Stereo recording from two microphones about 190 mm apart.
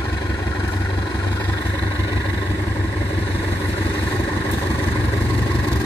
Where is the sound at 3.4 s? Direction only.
10° left (ahead or behind).